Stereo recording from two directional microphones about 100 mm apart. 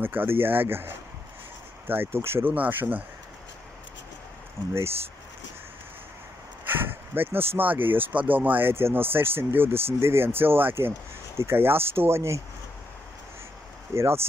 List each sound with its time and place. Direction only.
0.0 s speech: 20° right (ahead or behind)
6.7 s speech: 20° right (ahead or behind)
13.9 s speech: 25° right (ahead or behind)